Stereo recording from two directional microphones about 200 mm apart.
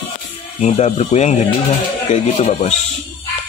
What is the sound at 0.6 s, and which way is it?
Speech, 35° left (ahead or behind).